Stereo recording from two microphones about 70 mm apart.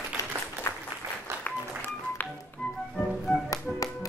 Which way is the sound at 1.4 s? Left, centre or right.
Left.